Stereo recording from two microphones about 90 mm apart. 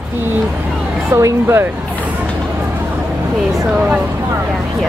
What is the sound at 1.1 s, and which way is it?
Speech, 35° right (ahead or behind).